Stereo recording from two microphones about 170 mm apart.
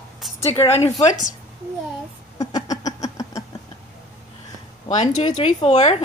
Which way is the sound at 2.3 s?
20° left (ahead or behind).